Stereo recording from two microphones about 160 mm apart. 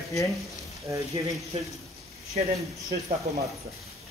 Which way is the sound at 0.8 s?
20° right (ahead or behind).